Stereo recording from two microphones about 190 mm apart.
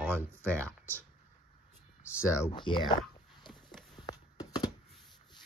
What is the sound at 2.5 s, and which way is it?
Speech, 25° left (ahead or behind).